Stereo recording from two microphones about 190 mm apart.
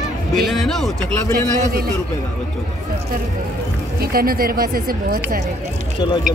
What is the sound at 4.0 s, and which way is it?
Speech, 50° right (ahead or behind).